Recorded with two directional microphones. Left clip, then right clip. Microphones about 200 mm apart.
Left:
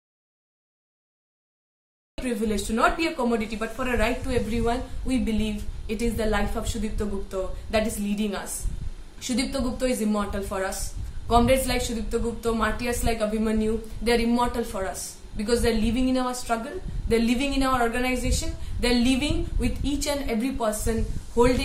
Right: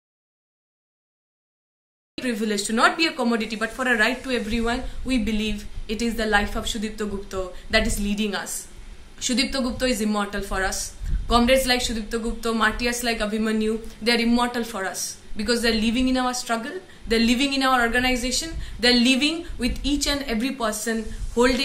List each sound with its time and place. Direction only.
2.1 s a man's voice: 5° left (ahead or behind)